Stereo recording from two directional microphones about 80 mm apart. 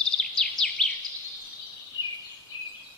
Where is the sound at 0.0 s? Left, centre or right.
Centre.